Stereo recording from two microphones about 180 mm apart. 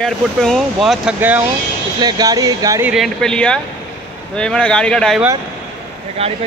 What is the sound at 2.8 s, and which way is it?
Speech, centre (ahead or behind).